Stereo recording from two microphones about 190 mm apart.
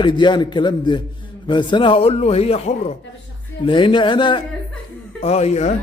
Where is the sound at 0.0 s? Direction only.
25° left (ahead or behind).